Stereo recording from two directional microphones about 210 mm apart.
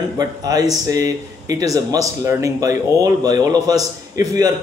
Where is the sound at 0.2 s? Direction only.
15° right (ahead or behind).